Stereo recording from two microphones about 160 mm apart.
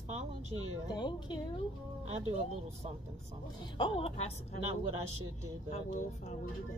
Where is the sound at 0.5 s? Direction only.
30° left (ahead or behind).